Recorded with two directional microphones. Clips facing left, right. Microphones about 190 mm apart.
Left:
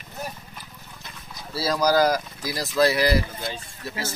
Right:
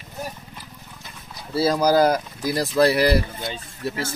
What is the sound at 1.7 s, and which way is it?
Speech, 25° right (ahead or behind).